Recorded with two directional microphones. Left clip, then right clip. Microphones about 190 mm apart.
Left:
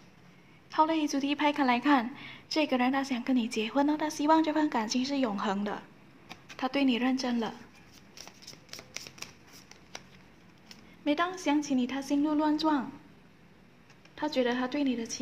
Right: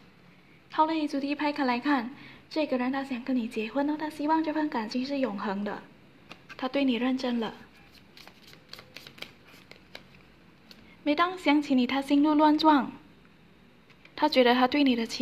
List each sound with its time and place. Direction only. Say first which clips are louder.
0.7 s a woman's voice: right 1 dB; 5° right (ahead or behind)
11.1 s a woman's voice: right 4 dB; 15° right (ahead or behind)
14.1 s a woman's voice: right 7 dB; 25° right (ahead or behind)